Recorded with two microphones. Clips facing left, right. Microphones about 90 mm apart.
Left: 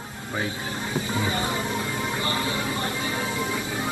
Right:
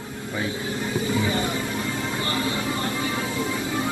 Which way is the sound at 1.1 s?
25° left (ahead or behind).